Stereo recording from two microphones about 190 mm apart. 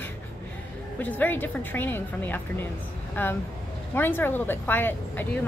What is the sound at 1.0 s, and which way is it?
Speech, 10° left (ahead or behind).